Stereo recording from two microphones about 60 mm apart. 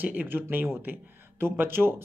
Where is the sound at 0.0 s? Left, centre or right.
Right.